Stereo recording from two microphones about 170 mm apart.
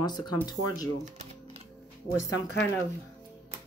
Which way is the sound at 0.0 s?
25° left (ahead or behind).